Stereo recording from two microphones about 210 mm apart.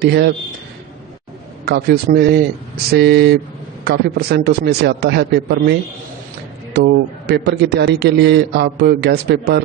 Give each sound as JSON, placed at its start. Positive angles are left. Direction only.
{"t": 0.0, "sound": "a man's voice", "side_deg": -50}
{"t": 1.7, "sound": "a man's voice", "side_deg": -50}